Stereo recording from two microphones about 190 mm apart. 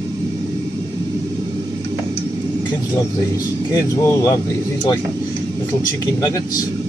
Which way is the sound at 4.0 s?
15° left (ahead or behind).